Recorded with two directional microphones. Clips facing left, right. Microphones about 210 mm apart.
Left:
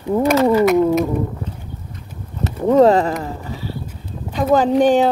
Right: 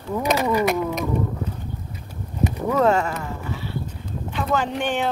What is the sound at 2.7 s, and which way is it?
Speech, 35° left (ahead or behind).